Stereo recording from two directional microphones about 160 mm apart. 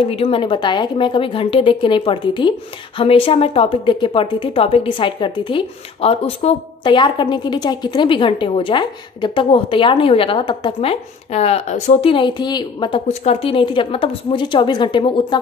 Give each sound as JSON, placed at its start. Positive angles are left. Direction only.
{"t": 0.0, "sound": "a woman's voice", "side_deg": 35}
{"t": 13.1, "sound": "a woman's voice", "side_deg": 40}